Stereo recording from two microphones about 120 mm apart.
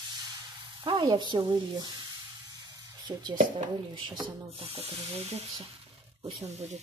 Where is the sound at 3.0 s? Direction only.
40° right (ahead or behind).